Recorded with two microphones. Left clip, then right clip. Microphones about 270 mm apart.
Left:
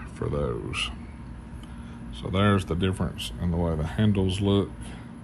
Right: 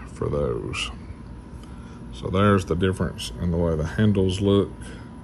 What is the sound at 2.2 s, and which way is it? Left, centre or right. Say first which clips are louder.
Speech: right 4 dB; centre.